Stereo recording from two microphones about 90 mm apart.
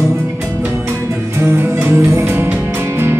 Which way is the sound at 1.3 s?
25° right (ahead or behind).